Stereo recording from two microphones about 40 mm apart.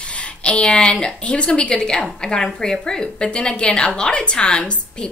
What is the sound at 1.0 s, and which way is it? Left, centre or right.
Speech, left.